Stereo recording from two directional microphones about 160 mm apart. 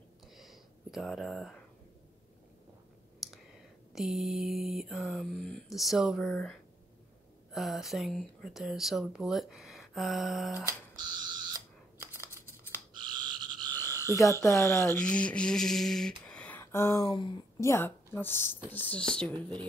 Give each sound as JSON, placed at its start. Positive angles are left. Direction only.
{"t": 0.3, "sound": "a sound", "side_deg": 0}
{"t": 3.2, "sound": "clicking", "side_deg": 0}
{"t": 3.9, "sound": "speech", "side_deg": 0}
{"t": 12.9, "sound": "frog", "side_deg": -25}
{"t": 13.7, "sound": "frog", "side_deg": 15}
{"t": 14.1, "sound": "a woman's voice", "side_deg": 20}
{"t": 15.0, "sound": "speech", "side_deg": 5}
{"t": 16.3, "sound": "a sound", "side_deg": 10}
{"t": 17.0, "sound": "speech", "side_deg": 30}
{"t": 17.6, "sound": "a woman's voice", "side_deg": 15}